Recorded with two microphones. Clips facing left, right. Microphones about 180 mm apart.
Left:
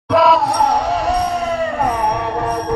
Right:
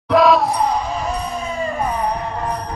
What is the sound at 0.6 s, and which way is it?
Music, 70° left (ahead or behind).